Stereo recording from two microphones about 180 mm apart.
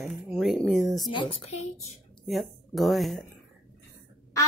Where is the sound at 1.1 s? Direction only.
30° left (ahead or behind).